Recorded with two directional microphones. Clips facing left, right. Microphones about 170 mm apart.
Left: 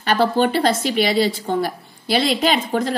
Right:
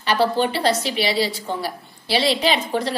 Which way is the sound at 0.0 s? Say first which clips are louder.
Left 2 dB; 50° left (ahead or behind).